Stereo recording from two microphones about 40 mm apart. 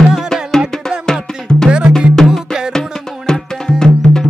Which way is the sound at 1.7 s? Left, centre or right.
Right.